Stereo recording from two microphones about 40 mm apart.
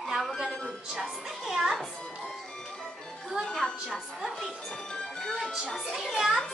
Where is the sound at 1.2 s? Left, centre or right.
Centre.